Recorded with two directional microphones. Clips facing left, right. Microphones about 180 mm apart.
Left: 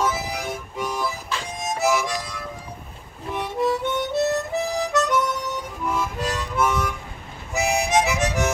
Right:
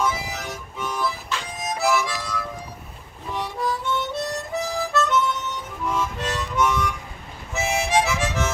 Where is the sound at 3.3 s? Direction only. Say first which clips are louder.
Left 4 dB; 20° left (ahead or behind).